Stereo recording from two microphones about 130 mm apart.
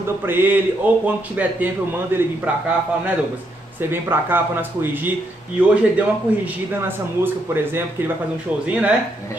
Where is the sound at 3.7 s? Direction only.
15° right (ahead or behind).